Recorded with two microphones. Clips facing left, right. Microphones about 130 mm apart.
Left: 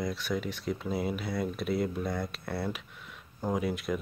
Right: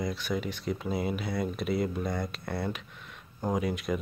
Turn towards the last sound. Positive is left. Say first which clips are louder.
# right 1 dB
turn(degrees=0)  # may be behind; listen again after turning